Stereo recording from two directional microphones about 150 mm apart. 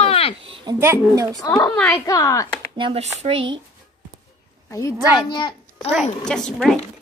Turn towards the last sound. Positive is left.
turn(degrees=0)  # may be behind; listen again after turning